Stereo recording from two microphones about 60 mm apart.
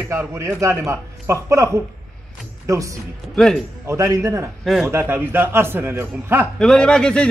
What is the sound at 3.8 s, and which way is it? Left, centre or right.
Speech, right.